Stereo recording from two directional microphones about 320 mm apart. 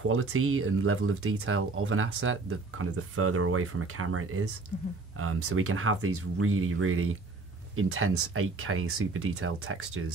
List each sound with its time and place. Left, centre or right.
0.0 s speech: right